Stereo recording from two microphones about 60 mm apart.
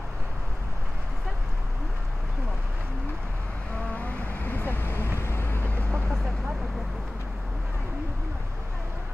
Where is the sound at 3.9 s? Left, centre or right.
Left.